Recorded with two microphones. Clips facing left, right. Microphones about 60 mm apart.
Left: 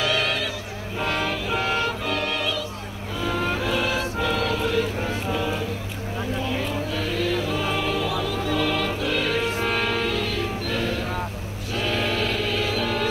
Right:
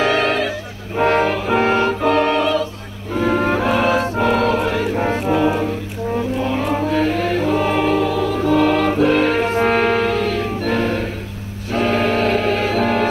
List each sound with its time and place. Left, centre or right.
0.0 s music: right
6.4 s chant: right
11.7 s music: right